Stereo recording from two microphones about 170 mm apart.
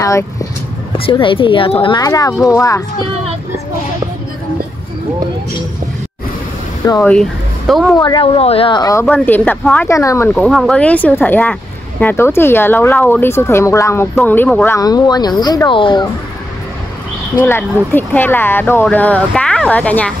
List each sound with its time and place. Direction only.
0.9 s speech: 30° left (ahead or behind)
7.0 s speech: 5° left (ahead or behind)
8.0 s speech: 25° left (ahead or behind)
9.0 s speech: 10° left (ahead or behind)
10.3 s speech: centre (ahead or behind)
14.8 s speech: 20° left (ahead or behind)
17.4 s speech: 10° left (ahead or behind)